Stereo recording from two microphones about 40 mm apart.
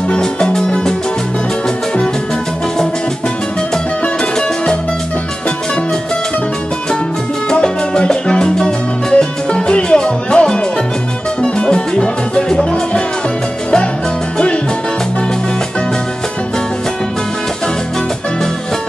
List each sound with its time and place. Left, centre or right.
0.1 s music: centre
7.4 s music: centre